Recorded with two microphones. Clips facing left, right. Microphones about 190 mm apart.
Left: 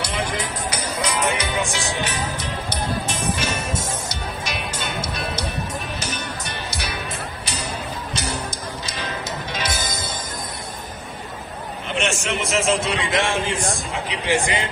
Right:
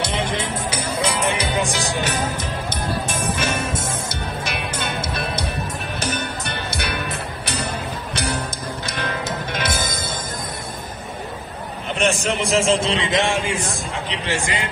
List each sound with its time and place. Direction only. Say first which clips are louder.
0.0 s music: right 2 dB; 25° right (ahead or behind)
2.7 s music: even; 55° right (ahead or behind)
5.9 s music: right 4 dB; 55° right (ahead or behind)
11.9 s a man's voice: right 3 dB; 40° right (ahead or behind); by 13.6 s 15° right (ahead or behind)
13.6 s a man's voice: left 1 dB; 10° left (ahead or behind)